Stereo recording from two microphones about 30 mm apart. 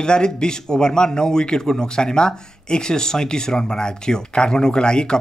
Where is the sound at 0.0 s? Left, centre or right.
Left.